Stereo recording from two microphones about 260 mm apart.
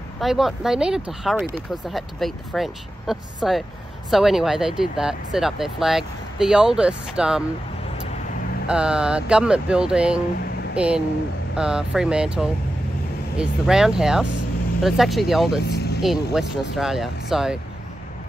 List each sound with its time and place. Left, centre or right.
0.2 s speech: centre
8.6 s speech: centre
15.7 s vehicle: left
16.0 s speech: centre